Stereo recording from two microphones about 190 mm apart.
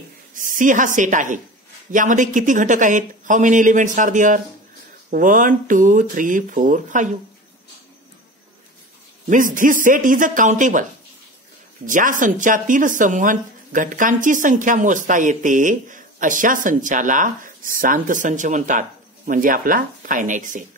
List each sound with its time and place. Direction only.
0.3 s speech: 45° right (ahead or behind)
9.3 s speech: 45° right (ahead or behind)
11.9 s speech: 45° right (ahead or behind)